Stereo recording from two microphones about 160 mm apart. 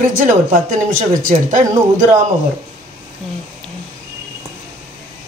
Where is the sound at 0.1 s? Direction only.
60° right (ahead or behind).